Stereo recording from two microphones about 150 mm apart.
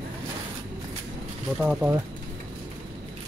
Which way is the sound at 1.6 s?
10° right (ahead or behind).